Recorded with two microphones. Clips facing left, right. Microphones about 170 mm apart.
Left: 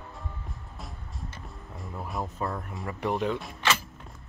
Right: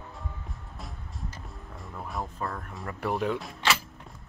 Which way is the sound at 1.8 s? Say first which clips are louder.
Left 2 dB; centre (ahead or behind).